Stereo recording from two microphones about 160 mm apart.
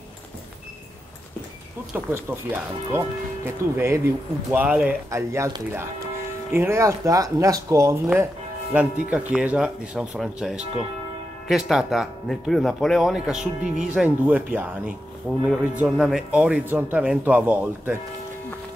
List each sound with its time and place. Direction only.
2.0 s speech: 15° right (ahead or behind)
5.1 s speech: 20° right (ahead or behind)